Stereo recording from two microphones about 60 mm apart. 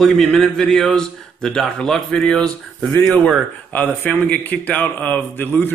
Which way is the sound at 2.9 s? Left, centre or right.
Left.